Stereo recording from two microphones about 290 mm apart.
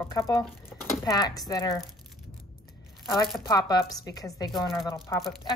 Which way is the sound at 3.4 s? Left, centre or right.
Centre.